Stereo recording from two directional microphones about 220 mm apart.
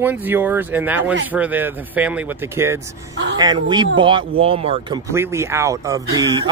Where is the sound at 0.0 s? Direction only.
10° right (ahead or behind).